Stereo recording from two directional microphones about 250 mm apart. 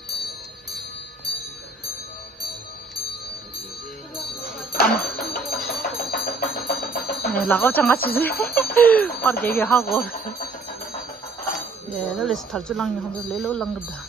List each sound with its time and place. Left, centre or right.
4.7 s music: left
7.3 s speech: centre
10.1 s speech: left
11.5 s speech: centre